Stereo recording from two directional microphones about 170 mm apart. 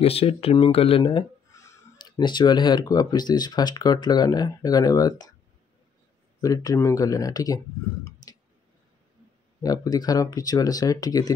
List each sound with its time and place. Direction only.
0.0 s speech: 35° left (ahead or behind)
6.4 s speech: 20° left (ahead or behind)
9.6 s speech: 20° left (ahead or behind)